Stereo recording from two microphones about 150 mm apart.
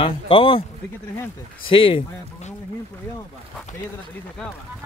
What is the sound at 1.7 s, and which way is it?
Speech, 35° left (ahead or behind).